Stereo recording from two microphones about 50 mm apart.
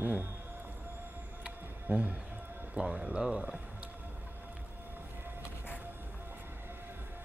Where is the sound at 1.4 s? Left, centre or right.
Right.